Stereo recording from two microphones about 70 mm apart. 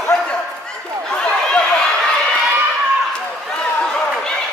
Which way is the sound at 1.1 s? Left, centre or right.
Centre.